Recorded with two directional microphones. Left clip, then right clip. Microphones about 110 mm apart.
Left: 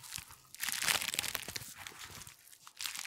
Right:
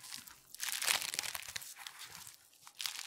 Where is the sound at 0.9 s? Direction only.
15° left (ahead or behind).